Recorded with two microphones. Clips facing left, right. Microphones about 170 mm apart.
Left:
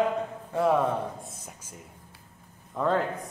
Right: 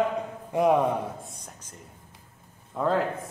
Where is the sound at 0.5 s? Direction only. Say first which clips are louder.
Right 2 dB; 15° right (ahead or behind).